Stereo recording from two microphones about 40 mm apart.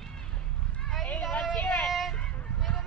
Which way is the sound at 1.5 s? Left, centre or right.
Left.